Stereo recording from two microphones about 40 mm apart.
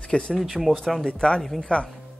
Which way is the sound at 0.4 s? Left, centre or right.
Centre.